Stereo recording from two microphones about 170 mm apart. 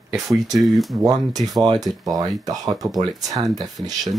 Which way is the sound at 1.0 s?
20° right (ahead or behind).